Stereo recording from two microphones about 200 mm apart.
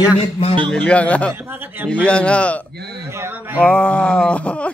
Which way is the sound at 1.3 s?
10° right (ahead or behind).